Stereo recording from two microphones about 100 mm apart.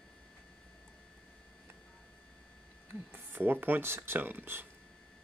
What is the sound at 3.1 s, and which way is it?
Speech, 20° right (ahead or behind).